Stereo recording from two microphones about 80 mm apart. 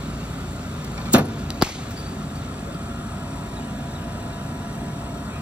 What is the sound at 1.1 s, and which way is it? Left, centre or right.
Chop, centre.